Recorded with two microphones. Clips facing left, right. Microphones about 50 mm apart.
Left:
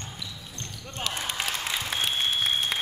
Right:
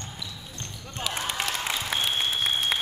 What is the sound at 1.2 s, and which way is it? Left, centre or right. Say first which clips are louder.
Applause: right 3 dB; centre.